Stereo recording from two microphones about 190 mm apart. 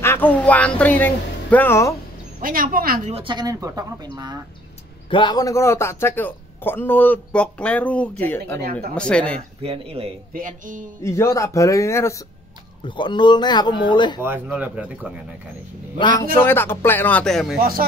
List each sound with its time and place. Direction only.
0.0 s speech: 10° left (ahead or behind)
2.4 s a sound: 45° right (ahead or behind)
3.1 s speech: 30° right (ahead or behind)
5.1 s a man's voice: 20° left (ahead or behind); by 9.4 s 5° left (ahead or behind)
9.6 s speech: 30° right (ahead or behind)
10.3 s a sound: 45° right (ahead or behind)
11.0 s a man's voice: 15° left (ahead or behind)
14.2 s speech: 10° right (ahead or behind)
16.3 s a man's voice: 10° left (ahead or behind)